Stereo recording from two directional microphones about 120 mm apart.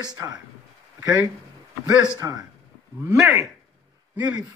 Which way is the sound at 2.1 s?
30° right (ahead or behind).